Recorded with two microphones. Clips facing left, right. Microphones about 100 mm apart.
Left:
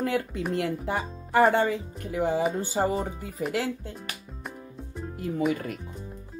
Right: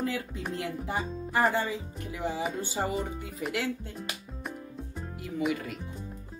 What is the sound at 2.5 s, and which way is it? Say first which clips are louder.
Music: left 5 dB; 40° left (ahead or behind).